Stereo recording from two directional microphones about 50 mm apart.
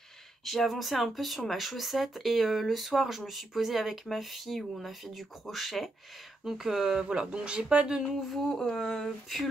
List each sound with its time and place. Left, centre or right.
0.5 s speech: centre
7.1 s speech: centre
8.0 s speech: centre